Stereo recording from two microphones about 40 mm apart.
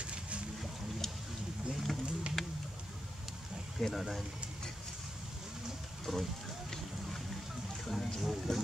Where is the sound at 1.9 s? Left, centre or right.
Centre.